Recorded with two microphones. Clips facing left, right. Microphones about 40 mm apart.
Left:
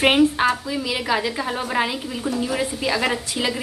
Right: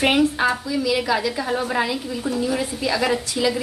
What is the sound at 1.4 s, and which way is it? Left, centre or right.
Speech, centre.